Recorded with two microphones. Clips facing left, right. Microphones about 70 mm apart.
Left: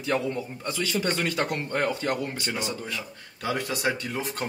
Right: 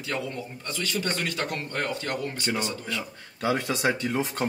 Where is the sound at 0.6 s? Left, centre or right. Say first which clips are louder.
Left 2 dB; centre.